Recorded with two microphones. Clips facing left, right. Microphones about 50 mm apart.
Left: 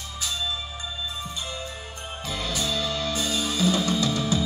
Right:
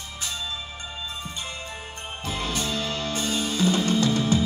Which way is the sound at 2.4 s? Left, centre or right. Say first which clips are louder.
Left 1 dB; right.